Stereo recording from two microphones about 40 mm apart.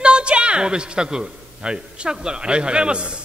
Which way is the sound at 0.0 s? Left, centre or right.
Right.